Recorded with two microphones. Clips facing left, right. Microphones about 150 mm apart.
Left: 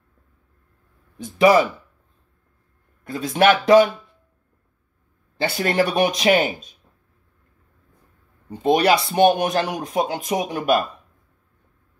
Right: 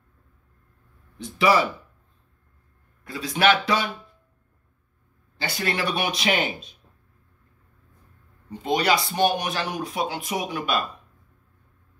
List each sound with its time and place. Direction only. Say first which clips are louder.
1.1 s speech: left 6 dB; 45° left (ahead or behind)
3.1 s speech: left 4 dB; 50° left (ahead or behind)
5.4 s speech: left 7 dB; 45° left (ahead or behind)
8.5 s speech: left 6 dB; 50° left (ahead or behind)